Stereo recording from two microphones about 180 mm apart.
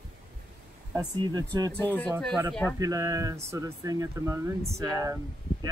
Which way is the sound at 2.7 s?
20° right (ahead or behind).